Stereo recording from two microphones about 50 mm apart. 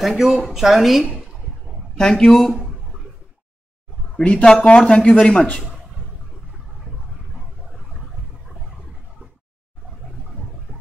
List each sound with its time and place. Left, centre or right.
0.0 s a woman's voice: centre
2.0 s speech: centre
2.5 s a sound: centre
4.2 s speech: left
7.3 s vehicle: centre
10.7 s vehicle: centre